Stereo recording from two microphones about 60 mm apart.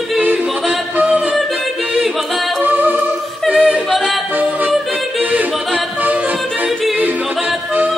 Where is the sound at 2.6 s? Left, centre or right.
Right.